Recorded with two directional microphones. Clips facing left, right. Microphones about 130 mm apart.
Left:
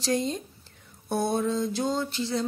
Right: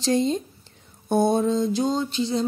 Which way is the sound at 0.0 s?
25° right (ahead or behind).